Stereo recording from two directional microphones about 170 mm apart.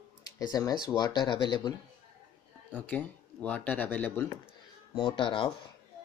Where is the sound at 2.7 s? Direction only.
10° left (ahead or behind).